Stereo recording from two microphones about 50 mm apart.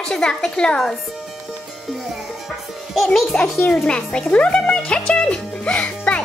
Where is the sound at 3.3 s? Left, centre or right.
Centre.